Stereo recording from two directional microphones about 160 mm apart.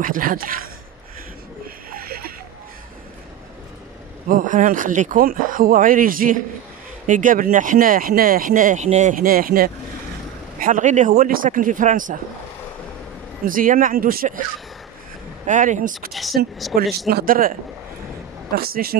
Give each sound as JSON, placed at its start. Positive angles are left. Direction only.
{"t": 0.0, "sound": "speech", "side_deg": -60}
{"t": 1.9, "sound": "a sound", "side_deg": -70}
{"t": 4.3, "sound": "speech", "side_deg": -55}
{"t": 10.6, "sound": "speech", "side_deg": -55}
{"t": 13.5, "sound": "speech", "side_deg": -60}
{"t": 15.4, "sound": "speech", "side_deg": -50}
{"t": 16.1, "sound": "speech", "side_deg": 0}
{"t": 16.7, "sound": "speech", "side_deg": -60}